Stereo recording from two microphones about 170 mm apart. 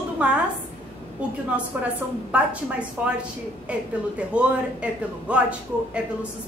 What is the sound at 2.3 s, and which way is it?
Speech, 5° right (ahead or behind).